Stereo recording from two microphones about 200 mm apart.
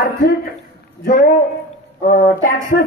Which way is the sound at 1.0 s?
50° left (ahead or behind).